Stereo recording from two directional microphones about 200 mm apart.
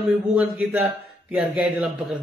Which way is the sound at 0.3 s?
5° right (ahead or behind).